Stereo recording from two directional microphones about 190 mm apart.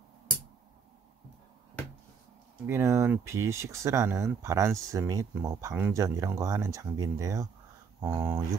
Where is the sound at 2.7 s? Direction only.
15° right (ahead or behind).